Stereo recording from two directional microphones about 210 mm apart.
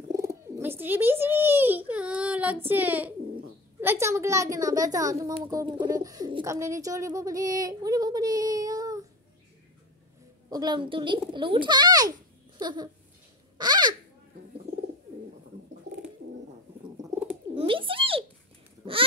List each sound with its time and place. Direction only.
0.1 s bird: 15° right (ahead or behind)
3.8 s speech: 10° right (ahead or behind)
10.5 s a child's voice: 20° right (ahead or behind)
13.6 s a sound: 20° right (ahead or behind)
17.1 s bird: 5° right (ahead or behind)
17.6 s a sound: 25° right (ahead or behind)